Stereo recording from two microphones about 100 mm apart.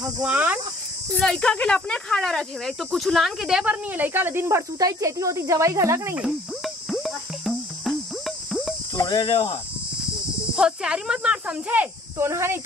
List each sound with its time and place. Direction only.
0.0 s speech: 15° right (ahead or behind)
1.1 s speech: 5° left (ahead or behind)
3.9 s speech: 20° right (ahead or behind)
6.2 s cricket: centre (ahead or behind)
8.9 s speech: 45° left (ahead or behind)
10.5 s speech: 10° right (ahead or behind)
12.3 s speech: 25° right (ahead or behind)